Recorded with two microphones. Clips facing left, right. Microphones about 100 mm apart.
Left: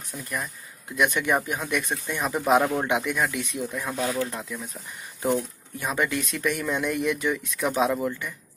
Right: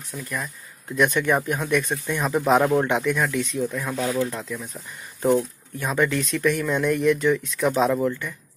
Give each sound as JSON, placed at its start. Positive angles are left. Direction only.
{"t": 0.2, "sound": "speech", "side_deg": 15}
{"t": 3.8, "sound": "speech", "side_deg": 5}